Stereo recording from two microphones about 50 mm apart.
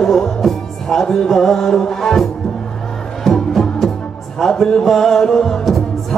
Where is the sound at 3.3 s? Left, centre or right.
Centre.